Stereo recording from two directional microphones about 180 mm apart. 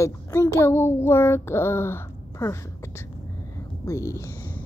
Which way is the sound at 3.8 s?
15° left (ahead or behind).